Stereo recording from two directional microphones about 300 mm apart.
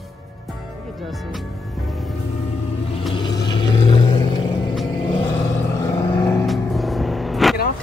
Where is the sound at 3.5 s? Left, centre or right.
Centre.